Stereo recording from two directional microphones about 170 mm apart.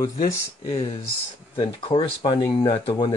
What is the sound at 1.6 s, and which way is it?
Speech, 30° left (ahead or behind).